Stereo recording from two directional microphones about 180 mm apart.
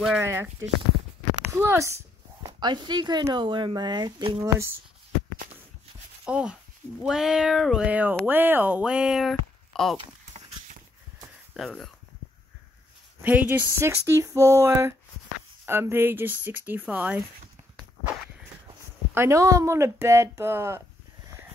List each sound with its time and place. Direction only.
0.2 s speech: 15° right (ahead or behind)
6.2 s speech: 5° right (ahead or behind)
9.9 s clip-clop: 40° right (ahead or behind)
11.5 s speech: centre (ahead or behind)
13.2 s speech: 10° right (ahead or behind)
19.1 s speech: 15° right (ahead or behind)